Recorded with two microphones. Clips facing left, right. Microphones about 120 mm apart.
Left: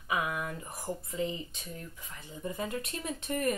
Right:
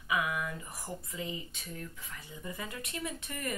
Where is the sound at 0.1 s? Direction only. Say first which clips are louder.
Even; 40° left (ahead or behind).